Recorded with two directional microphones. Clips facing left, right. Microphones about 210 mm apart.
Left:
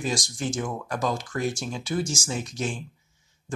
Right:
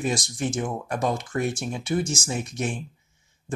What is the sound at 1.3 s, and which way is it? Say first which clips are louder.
Speech: right 2 dB; 60° right (ahead or behind).